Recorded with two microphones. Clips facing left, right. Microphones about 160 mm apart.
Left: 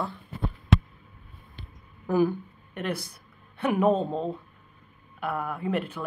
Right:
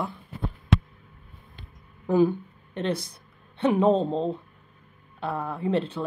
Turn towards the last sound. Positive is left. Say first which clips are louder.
# right 3 dB
turn(degrees=-25)  # may be behind; listen again after turning